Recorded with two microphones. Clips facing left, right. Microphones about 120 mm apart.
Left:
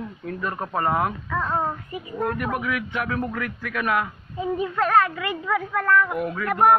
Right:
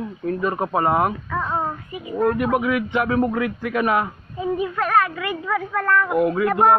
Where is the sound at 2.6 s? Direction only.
25° right (ahead or behind).